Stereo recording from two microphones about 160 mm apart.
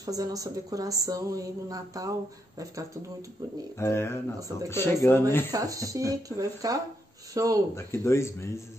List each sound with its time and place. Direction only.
0.0 s speech: 20° right (ahead or behind)
3.8 s speech: 15° left (ahead or behind)
5.5 s speech: 20° right (ahead or behind)
7.7 s speech: 15° left (ahead or behind)